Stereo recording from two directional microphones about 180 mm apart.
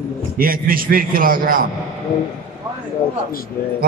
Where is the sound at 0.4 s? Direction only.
55° right (ahead or behind).